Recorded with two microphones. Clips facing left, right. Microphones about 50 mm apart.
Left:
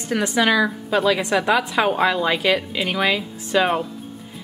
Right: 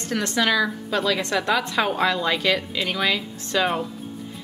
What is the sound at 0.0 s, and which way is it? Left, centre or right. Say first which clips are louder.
A woman's voice: left 3 dB; centre.